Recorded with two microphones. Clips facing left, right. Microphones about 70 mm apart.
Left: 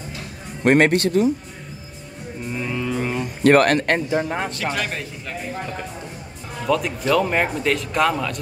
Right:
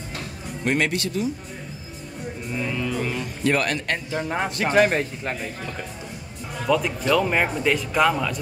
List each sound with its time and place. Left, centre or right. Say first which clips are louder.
0.7 s speech: left 8 dB; left
2.5 s music: left 2 dB; centre
3.4 s speech: left 8 dB; left
4.6 s a man's voice: right 7 dB; right
6.6 s speech: left 1 dB; centre